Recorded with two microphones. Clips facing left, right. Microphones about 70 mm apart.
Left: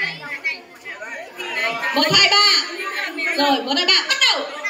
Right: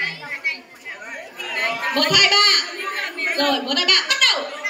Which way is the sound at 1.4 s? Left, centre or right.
Centre.